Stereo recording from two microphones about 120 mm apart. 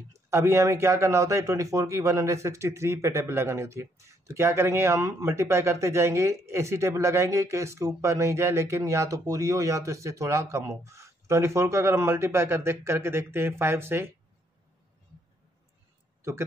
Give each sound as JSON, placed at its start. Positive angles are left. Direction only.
{"t": 0.1, "sound": "speech", "side_deg": -25}